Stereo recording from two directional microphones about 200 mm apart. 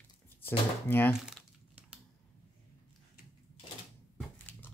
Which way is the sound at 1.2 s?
5° right (ahead or behind).